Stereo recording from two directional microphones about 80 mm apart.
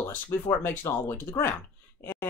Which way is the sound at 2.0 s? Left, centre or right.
Left.